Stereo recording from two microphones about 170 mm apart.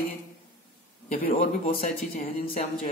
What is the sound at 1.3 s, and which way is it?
Speech, 40° left (ahead or behind).